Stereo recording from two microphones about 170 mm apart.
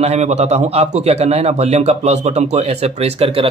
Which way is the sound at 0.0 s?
40° right (ahead or behind).